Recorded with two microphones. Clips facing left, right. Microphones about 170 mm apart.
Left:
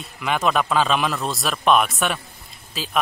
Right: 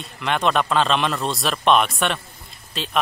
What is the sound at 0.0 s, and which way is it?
A man's voice, 5° left (ahead or behind).